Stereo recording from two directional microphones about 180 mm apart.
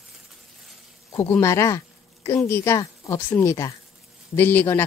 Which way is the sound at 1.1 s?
15° left (ahead or behind).